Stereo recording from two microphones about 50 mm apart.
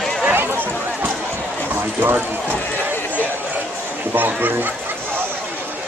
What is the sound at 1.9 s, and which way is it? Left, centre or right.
Speech, right.